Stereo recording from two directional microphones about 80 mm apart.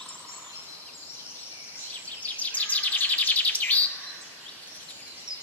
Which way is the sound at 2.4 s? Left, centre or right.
Centre.